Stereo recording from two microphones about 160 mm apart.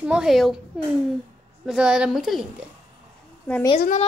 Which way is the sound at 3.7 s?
50° left (ahead or behind).